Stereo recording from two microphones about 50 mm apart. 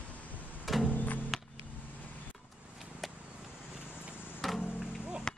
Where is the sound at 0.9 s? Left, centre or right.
Left.